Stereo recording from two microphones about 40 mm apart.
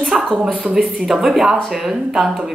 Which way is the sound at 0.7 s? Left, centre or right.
Centre.